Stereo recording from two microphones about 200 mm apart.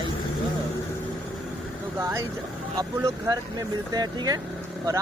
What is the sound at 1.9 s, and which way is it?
Speech, 15° right (ahead or behind).